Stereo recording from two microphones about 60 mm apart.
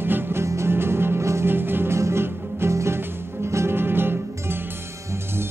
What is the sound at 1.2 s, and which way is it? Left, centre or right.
Music, right.